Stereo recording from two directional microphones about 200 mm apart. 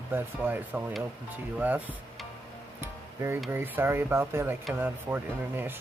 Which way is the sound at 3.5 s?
10° right (ahead or behind).